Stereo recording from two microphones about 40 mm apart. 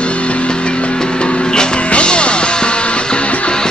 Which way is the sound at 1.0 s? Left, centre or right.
Left.